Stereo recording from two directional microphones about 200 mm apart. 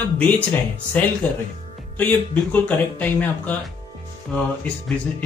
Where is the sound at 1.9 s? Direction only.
10° left (ahead or behind).